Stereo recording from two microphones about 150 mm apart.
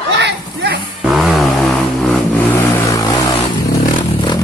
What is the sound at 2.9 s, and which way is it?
Vehicle, 25° left (ahead or behind).